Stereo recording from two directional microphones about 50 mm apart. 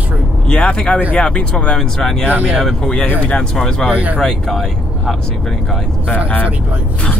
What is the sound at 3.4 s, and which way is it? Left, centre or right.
Speech, centre.